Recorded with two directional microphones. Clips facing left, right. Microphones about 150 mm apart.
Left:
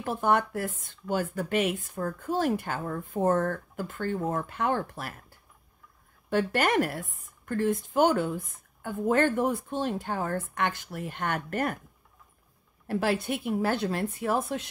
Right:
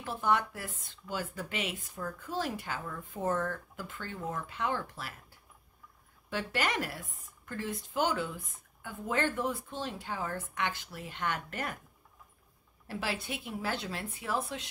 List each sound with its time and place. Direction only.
0.0 s speech: 50° left (ahead or behind)
6.3 s speech: 50° left (ahead or behind)
12.8 s speech: 50° left (ahead or behind)